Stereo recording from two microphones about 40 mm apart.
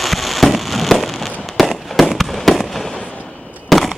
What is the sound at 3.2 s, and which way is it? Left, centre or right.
Fireworks, left.